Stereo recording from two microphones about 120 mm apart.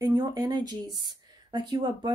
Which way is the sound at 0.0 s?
35° right (ahead or behind).